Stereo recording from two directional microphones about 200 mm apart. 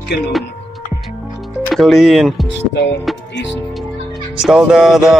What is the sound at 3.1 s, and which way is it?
Music, centre (ahead or behind).